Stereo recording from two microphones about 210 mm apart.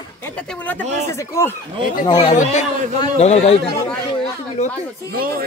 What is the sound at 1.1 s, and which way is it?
A man's voice, 15° left (ahead or behind).